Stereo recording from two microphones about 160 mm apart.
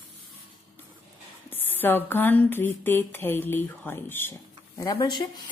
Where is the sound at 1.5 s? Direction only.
10° left (ahead or behind).